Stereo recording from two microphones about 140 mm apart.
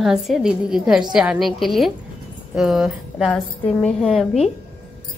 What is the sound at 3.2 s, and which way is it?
Speech, 10° left (ahead or behind).